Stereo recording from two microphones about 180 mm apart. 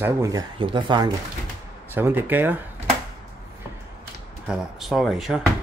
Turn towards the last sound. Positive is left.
turn(degrees=0)  # may be behind; listen again after turning